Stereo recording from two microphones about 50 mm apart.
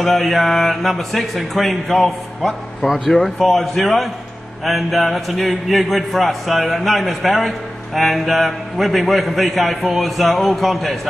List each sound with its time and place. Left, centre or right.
0.0 s a man's voice: centre